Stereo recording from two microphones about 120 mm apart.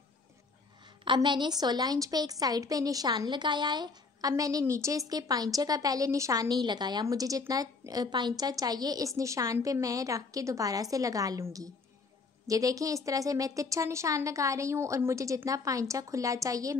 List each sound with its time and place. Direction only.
1.0 s a woman's voice: 40° right (ahead or behind)